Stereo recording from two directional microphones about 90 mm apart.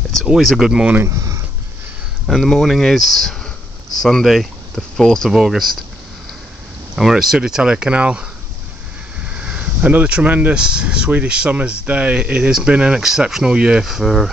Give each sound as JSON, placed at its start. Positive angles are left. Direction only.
{"t": 0.2, "sound": "speech", "side_deg": 0}
{"t": 0.9, "sound": "speech", "side_deg": -35}
{"t": 2.2, "sound": "speech", "side_deg": 5}
{"t": 7.0, "sound": "speech", "side_deg": -5}